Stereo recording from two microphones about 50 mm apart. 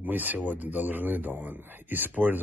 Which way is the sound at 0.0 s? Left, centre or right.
Right.